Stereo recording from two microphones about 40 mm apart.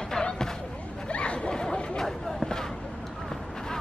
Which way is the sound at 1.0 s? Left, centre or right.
Left.